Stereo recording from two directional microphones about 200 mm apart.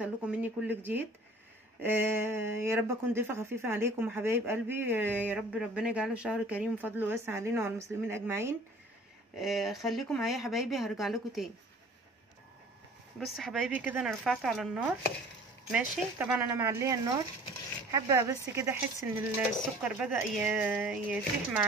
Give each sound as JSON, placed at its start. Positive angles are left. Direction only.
{"t": 0.0, "sound": "speech", "side_deg": -5}
{"t": 9.4, "sound": "speech", "side_deg": 0}
{"t": 13.2, "sound": "speech", "side_deg": 0}